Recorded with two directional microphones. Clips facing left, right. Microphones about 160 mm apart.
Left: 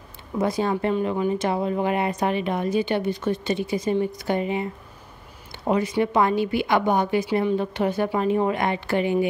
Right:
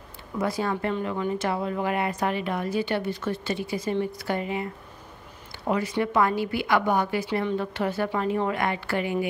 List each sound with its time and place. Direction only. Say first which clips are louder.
0.4 s speech: left 4 dB; 20° left (ahead or behind)
5.7 s speech: left 4 dB; 20° left (ahead or behind)